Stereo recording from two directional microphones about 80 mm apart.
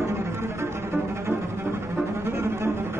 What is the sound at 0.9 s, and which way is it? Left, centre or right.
Cello, right.